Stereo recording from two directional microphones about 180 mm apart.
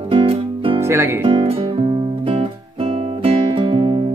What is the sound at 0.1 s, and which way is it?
Music, 30° right (ahead or behind).